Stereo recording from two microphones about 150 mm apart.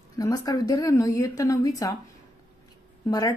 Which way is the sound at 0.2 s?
25° left (ahead or behind).